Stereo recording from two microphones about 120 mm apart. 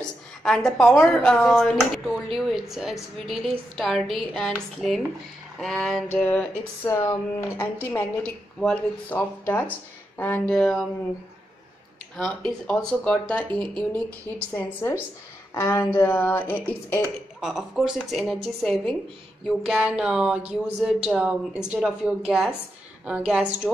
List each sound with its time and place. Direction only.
0.4 s speech: 5° left (ahead or behind)
5.6 s speech: 5° left (ahead or behind)
6.1 s speech: 15° left (ahead or behind)
12.2 s speech: 5° left (ahead or behind)
17.4 s speech: centre (ahead or behind)
19.4 s a woman's voice: 5° right (ahead or behind)